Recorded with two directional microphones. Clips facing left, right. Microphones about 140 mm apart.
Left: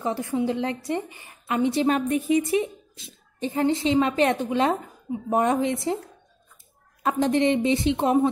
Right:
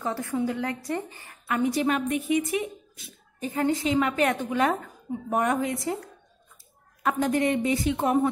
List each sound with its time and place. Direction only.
0.0 s a woman's voice: 20° left (ahead or behind)
7.0 s a woman's voice: 25° left (ahead or behind)